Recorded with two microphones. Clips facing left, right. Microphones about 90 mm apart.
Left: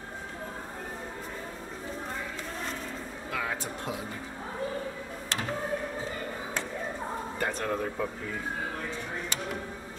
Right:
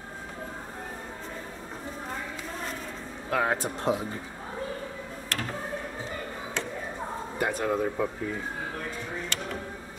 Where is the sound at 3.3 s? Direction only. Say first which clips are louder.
Right 7 dB; 45° right (ahead or behind).